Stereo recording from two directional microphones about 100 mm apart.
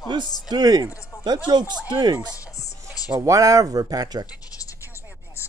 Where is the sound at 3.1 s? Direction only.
35° right (ahead or behind).